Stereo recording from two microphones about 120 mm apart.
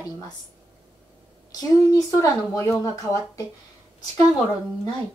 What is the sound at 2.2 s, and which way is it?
A woman's voice, 25° left (ahead or behind).